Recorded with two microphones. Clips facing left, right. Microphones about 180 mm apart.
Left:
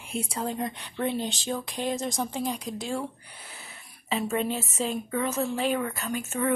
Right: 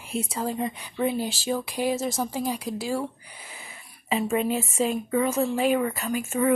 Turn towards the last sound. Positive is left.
turn(degrees=-10)  # may be behind; listen again after turning